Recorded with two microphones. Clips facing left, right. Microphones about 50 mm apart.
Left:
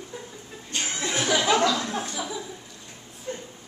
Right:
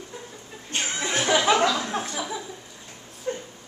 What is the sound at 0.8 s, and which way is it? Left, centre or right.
Chuckle, centre.